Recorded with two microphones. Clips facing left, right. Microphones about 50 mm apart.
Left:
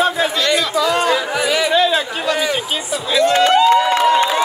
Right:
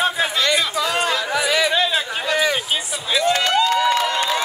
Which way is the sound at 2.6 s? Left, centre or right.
Centre.